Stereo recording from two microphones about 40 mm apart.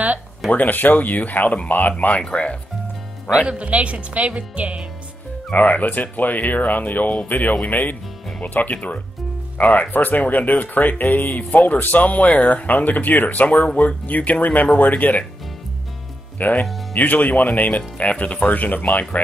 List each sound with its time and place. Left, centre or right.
0.5 s speech: left
2.2 s speech: left
3.3 s speech: right
5.5 s speech: left
16.3 s speech: left